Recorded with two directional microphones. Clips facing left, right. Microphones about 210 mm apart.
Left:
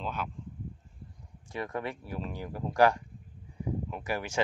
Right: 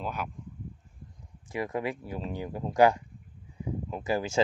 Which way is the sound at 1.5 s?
20° right (ahead or behind).